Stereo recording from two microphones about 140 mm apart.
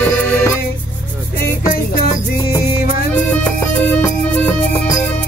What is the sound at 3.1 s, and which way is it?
Music, 10° left (ahead or behind).